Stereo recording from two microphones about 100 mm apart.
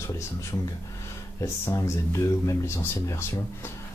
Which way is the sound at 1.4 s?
30° left (ahead or behind).